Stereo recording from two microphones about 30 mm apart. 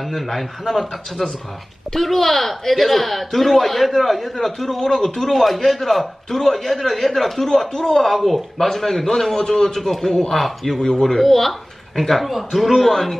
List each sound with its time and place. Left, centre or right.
0.1 s a man's voice: centre
7.4 s speech: left
7.9 s a man's voice: centre
10.8 s speech: left
11.1 s a man's voice: centre
12.8 s a man's voice: centre